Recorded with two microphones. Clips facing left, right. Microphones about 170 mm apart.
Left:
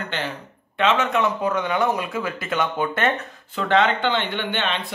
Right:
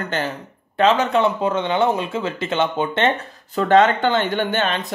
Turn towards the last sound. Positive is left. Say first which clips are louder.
# right 4 dB
turn(degrees=-45)  # may be behind; listen again after turning